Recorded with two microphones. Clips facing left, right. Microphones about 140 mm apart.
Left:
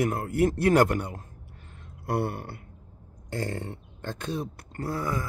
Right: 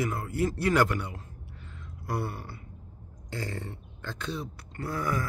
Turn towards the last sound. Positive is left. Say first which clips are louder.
# left 1 dB
turn(degrees=25)  # may be behind; listen again after turning